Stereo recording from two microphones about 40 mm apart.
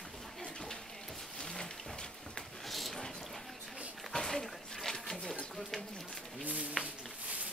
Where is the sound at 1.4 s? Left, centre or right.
Left.